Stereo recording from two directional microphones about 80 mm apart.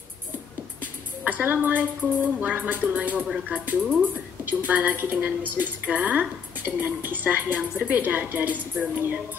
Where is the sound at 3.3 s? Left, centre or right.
Centre.